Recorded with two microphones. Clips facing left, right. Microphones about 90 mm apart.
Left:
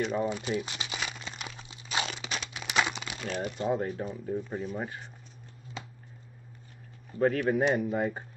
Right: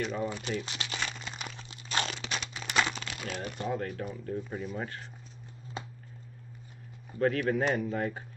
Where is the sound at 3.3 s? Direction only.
20° left (ahead or behind).